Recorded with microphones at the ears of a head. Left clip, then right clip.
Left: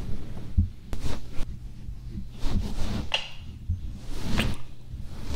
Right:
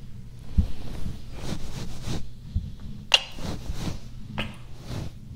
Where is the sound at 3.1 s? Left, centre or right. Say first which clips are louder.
Right 9 dB; right.